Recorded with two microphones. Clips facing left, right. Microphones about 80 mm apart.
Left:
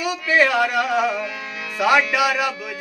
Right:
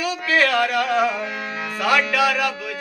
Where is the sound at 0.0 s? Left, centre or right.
Centre.